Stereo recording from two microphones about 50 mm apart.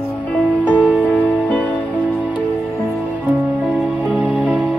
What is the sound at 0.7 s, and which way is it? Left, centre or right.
Music, right.